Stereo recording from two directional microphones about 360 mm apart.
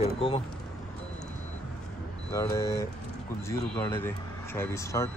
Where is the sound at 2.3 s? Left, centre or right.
Centre.